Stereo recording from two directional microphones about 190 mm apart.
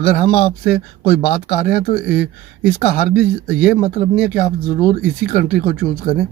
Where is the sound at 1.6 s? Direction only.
45° left (ahead or behind).